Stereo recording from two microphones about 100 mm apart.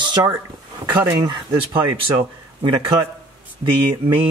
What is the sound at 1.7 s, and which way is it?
A man's voice, 55° right (ahead or behind).